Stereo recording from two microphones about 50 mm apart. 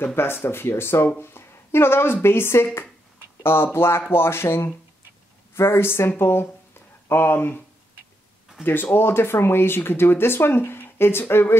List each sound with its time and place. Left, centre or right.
0.0 s speech: left
8.9 s speech: left